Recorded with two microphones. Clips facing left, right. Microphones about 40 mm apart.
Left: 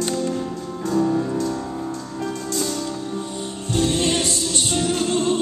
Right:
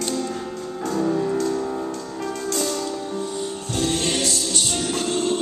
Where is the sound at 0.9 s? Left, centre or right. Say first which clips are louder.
Left 2 dB; centre.